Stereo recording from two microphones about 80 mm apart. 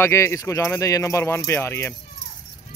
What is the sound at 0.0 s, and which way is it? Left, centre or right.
Speech, left.